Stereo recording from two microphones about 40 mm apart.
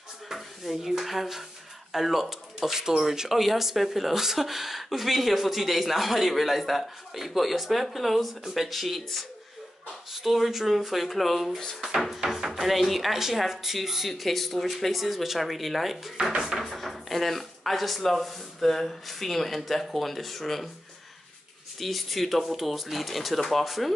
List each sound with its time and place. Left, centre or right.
0.3 s speech: centre
10.3 s speech: centre
16.3 s music: centre
16.5 s speech: centre
21.7 s speech: centre